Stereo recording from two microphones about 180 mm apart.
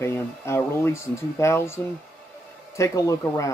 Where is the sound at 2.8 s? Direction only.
15° left (ahead or behind).